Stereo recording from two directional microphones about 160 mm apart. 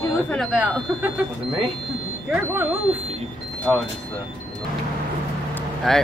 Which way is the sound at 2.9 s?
40° right (ahead or behind).